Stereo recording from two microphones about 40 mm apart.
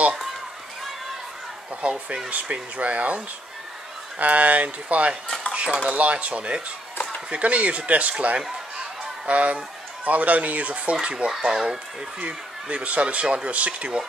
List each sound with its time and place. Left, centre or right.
1.8 s speech: right
4.2 s speech: right
9.2 s fowl: right
10.0 s speech: right; by 11.8 s centre
12.2 s speech: right